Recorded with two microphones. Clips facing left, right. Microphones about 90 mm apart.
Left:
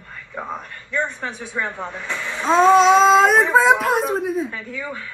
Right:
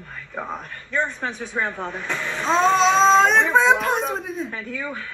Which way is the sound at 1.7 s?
15° left (ahead or behind).